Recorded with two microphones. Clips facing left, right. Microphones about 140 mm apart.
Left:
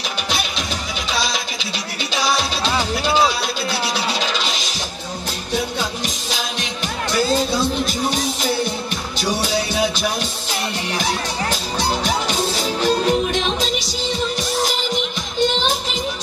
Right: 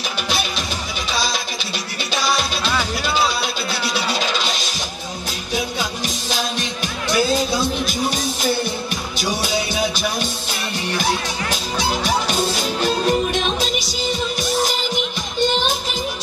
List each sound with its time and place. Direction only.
2.6 s music: 20° left (ahead or behind)
7.2 s music: centre (ahead or behind)
11.8 s music: centre (ahead or behind)